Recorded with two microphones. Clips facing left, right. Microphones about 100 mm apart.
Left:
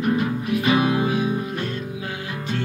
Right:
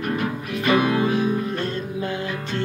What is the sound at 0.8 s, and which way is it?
Music, 20° left (ahead or behind).